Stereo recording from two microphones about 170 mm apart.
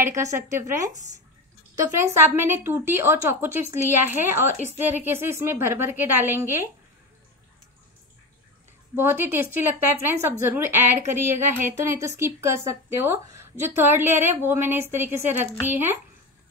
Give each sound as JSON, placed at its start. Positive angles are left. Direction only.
{"t": 0.0, "sound": "a woman's voice", "side_deg": -15}
{"t": 8.9, "sound": "a woman's voice", "side_deg": -10}